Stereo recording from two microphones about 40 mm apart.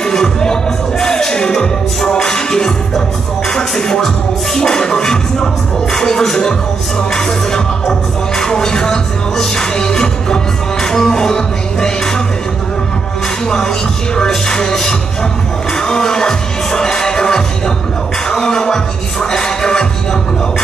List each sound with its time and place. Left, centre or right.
0.0 s music: centre
2.0 s speech: centre
14.1 s speech: centre
15.7 s music: centre
18.3 s speech: centre